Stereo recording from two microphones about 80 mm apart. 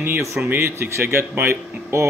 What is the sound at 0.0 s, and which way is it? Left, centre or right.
Speech, right.